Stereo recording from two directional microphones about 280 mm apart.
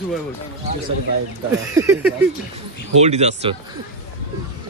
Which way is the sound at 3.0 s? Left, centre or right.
Right.